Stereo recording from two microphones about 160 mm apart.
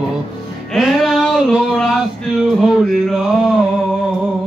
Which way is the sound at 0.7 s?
Centre (ahead or behind).